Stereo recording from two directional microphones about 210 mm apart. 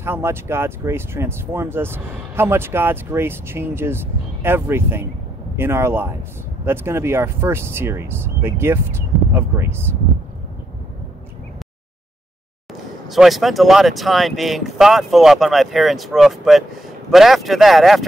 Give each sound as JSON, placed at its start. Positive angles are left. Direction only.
{"t": 0.0, "sound": "speech", "side_deg": -10}
{"t": 13.1, "sound": "speech", "side_deg": 0}